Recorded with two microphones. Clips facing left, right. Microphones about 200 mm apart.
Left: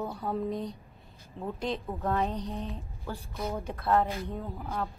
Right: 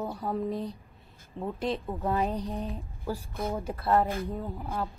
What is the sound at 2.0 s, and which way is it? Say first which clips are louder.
Speech: even; 15° right (ahead or behind).